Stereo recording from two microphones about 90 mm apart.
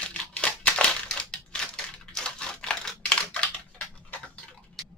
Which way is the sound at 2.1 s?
10° left (ahead or behind).